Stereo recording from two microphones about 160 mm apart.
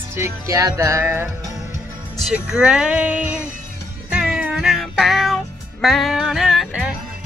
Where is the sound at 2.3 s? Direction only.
5° right (ahead or behind).